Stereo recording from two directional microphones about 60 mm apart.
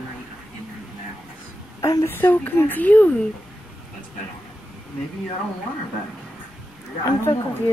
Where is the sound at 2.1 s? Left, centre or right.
Left.